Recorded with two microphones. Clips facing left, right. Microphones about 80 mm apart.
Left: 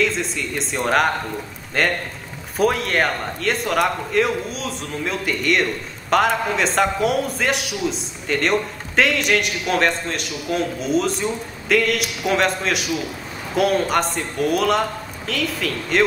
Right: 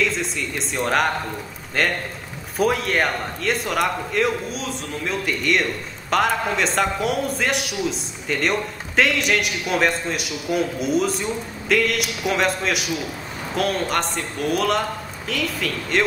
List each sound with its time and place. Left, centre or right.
0.0 s speech: centre